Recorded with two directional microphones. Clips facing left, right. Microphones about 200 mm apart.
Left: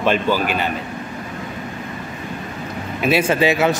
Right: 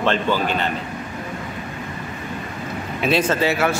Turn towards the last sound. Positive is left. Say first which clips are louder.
# left 3 dB
turn(degrees=15)  # may be behind; listen again after turning